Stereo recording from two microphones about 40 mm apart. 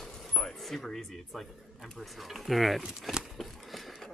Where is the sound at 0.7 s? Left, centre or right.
Centre.